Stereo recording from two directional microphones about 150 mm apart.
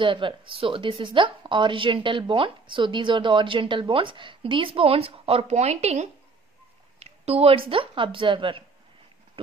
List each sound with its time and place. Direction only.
0.0 s a woman's voice: 35° right (ahead or behind)
7.0 s a sound: 45° right (ahead or behind)
7.7 s a woman's voice: 35° right (ahead or behind)